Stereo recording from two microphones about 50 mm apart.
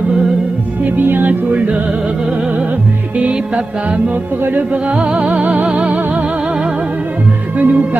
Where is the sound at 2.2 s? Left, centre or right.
Right.